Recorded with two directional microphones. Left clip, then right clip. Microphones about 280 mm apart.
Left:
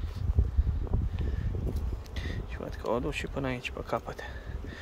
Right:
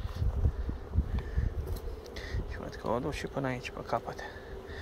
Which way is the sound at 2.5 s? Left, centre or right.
Left.